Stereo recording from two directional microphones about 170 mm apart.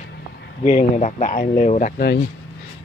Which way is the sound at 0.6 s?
45° left (ahead or behind).